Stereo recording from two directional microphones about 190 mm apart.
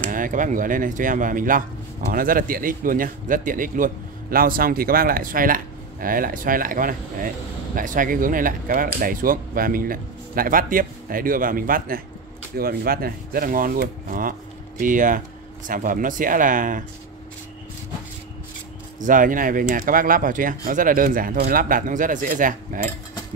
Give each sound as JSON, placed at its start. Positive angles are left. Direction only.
{"t": 0.1, "sound": "a man's voice", "side_deg": -45}
{"t": 18.9, "sound": "a man's voice", "side_deg": -45}